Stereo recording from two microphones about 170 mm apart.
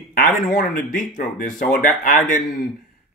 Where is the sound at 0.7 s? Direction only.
50° left (ahead or behind).